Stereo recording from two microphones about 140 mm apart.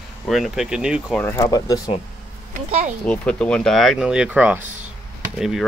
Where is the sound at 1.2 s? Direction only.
25° left (ahead or behind).